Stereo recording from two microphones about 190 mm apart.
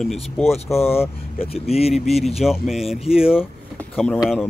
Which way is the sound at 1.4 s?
30° left (ahead or behind).